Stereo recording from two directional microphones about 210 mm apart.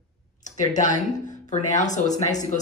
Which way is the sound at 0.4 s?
35° left (ahead or behind).